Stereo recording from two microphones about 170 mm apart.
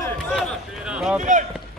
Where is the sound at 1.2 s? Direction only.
45° right (ahead or behind).